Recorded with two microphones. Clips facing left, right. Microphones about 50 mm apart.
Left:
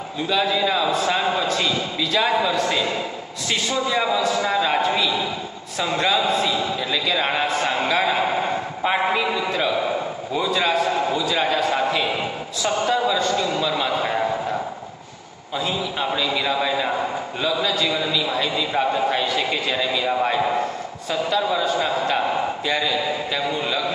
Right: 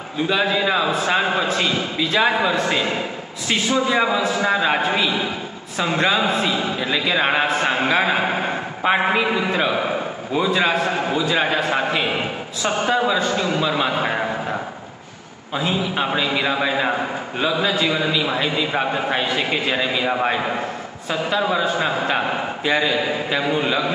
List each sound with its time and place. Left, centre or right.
0.2 s a man's voice: right